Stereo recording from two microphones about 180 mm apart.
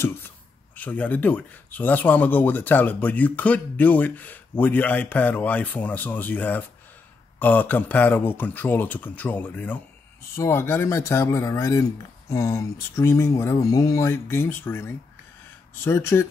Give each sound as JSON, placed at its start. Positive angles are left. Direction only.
{"t": 0.7, "sound": "speech", "side_deg": 10}